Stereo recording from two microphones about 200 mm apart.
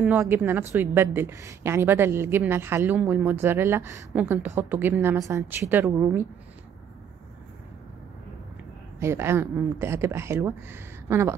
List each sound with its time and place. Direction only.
0.0 s a woman's voice: 10° right (ahead or behind)
9.0 s a woman's voice: 15° right (ahead or behind)